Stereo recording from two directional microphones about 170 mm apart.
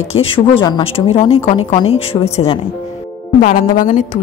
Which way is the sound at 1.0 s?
40° left (ahead or behind).